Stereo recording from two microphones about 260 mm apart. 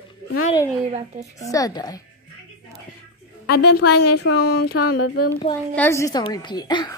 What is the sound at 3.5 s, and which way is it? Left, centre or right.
Speech, left.